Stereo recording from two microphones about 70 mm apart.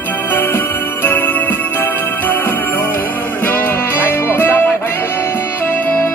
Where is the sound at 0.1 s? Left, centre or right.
Left.